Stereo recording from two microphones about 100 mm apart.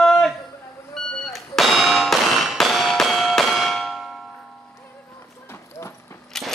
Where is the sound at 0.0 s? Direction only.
5° left (ahead or behind).